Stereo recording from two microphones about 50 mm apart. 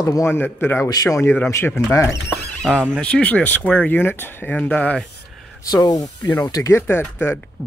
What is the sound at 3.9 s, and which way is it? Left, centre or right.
Speech, left.